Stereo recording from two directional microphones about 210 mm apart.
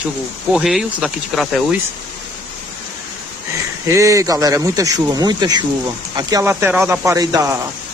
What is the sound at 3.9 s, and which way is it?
Speech, 15° right (ahead or behind).